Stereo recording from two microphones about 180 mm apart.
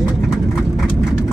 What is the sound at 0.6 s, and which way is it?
Vehicle, centre (ahead or behind).